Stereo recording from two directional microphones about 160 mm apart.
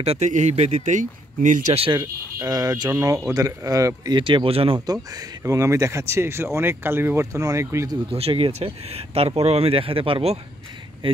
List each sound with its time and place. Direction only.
0.0 s speech: 45° right (ahead or behind)
2.0 s speech: 20° right (ahead or behind)
5.1 s speech: 20° right (ahead or behind)
8.1 s speech: 35° right (ahead or behind)